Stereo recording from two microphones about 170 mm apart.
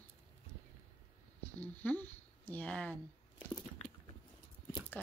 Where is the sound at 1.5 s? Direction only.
10° left (ahead or behind).